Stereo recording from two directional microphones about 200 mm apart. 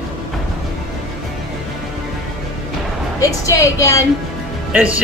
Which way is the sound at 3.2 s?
15° left (ahead or behind).